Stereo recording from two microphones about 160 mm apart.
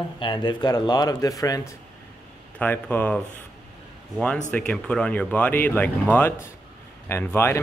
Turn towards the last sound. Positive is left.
turn(degrees=15)  # may be behind; listen again after turning